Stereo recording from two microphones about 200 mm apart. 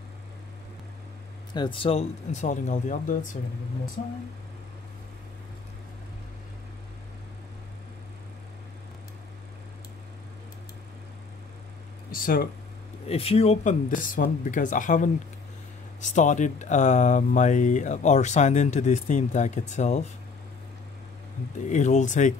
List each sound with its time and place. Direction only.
1.5 s speech: 25° left (ahead or behind); by 4.1 s 40° left (ahead or behind)
12.1 s speech: 45° left (ahead or behind)
13.1 s speech: 30° left (ahead or behind)
21.6 s speech: 35° left (ahead or behind)